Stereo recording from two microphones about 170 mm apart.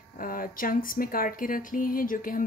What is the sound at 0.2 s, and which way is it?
Speech, 55° left (ahead or behind).